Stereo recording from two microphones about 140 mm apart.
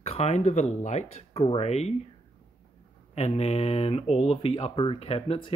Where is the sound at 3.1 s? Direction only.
50° left (ahead or behind).